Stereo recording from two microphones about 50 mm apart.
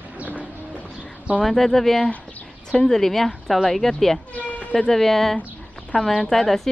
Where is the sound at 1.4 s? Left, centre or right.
Centre.